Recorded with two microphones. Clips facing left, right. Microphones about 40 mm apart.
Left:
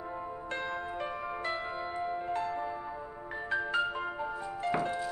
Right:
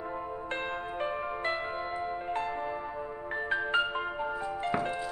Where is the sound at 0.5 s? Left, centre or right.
Right.